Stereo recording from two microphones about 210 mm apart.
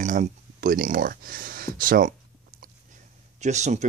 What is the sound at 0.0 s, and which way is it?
Speech, 35° right (ahead or behind).